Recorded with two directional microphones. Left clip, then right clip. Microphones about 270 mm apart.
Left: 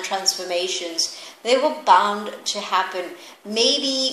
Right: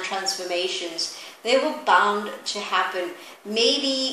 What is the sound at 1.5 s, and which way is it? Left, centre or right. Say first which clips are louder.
Speech: left 3 dB; left.